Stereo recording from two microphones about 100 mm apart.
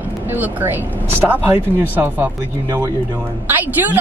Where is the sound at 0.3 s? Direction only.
20° right (ahead or behind).